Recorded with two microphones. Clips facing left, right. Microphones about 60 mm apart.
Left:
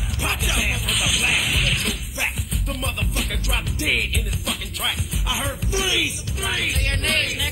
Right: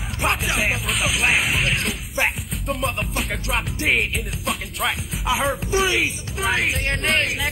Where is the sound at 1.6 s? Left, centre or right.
Right.